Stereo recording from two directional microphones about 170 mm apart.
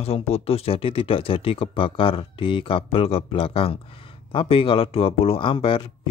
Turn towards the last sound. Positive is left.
turn(degrees=30)  # may be behind; listen again after turning